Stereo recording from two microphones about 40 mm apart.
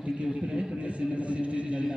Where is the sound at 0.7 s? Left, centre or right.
Right.